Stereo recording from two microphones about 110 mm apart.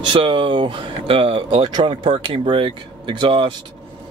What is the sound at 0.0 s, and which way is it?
Speech, 50° right (ahead or behind).